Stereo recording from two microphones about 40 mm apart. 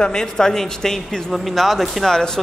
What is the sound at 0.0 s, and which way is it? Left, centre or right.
A man's voice, left.